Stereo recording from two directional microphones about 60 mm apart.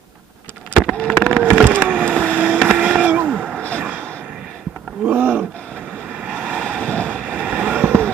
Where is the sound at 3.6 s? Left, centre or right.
Left.